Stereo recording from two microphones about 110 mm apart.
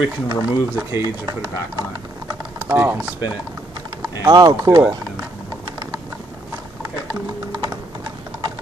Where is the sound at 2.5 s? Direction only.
20° right (ahead or behind).